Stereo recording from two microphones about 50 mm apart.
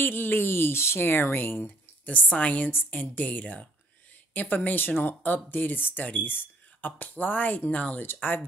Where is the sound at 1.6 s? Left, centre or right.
Left.